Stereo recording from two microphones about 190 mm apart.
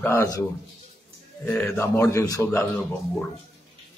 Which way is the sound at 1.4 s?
10° left (ahead or behind).